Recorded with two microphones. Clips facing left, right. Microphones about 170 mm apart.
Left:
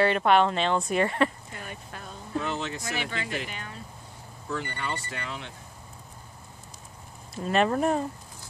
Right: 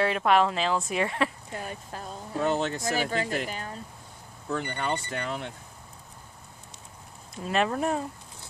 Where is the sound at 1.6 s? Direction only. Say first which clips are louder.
Right 3 dB; 40° right (ahead or behind).